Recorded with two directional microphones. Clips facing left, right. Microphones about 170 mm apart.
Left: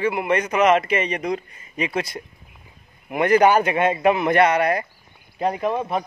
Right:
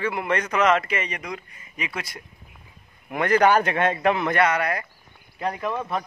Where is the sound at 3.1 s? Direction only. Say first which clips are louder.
Left 3 dB; 10° left (ahead or behind).